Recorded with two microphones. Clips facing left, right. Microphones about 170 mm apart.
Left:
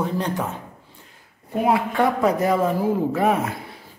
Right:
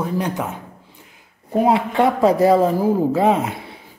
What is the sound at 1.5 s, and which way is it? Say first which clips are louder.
A man's voice: right 4 dB; 30° right (ahead or behind).